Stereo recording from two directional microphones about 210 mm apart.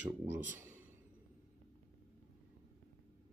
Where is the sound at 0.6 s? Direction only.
10° right (ahead or behind).